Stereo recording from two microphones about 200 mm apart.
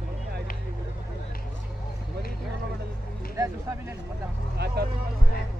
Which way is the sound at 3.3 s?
15° right (ahead or behind).